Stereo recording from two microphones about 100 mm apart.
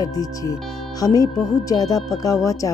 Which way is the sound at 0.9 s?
40° left (ahead or behind).